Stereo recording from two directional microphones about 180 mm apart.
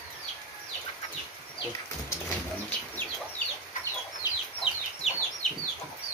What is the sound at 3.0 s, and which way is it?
Chicken, 10° left (ahead or behind).